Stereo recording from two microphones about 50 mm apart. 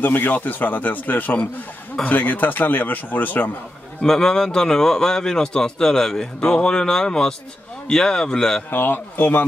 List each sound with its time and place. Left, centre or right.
0.0 s a man's voice: left
4.0 s a man's voice: centre
8.6 s a man's voice: left